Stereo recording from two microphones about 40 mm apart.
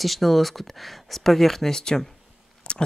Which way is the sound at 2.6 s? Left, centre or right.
Left.